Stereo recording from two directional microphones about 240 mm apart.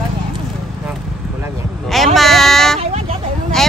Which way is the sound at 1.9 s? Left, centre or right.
Centre.